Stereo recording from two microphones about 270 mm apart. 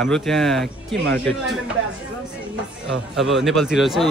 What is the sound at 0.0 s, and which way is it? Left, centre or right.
Speech, centre.